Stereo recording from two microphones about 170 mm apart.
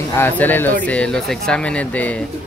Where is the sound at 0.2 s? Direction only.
10° left (ahead or behind).